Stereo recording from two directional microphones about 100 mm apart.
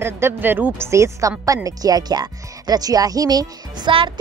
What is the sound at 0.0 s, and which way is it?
A woman's voice, 20° right (ahead or behind).